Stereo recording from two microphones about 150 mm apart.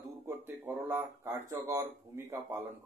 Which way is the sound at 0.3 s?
15° right (ahead or behind).